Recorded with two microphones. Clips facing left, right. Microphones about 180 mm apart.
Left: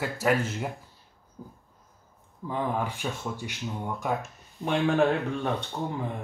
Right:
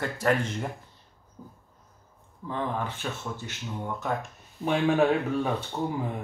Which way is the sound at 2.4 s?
10° left (ahead or behind).